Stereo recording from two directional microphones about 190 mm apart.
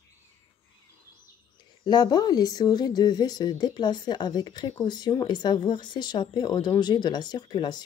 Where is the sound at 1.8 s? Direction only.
20° left (ahead or behind).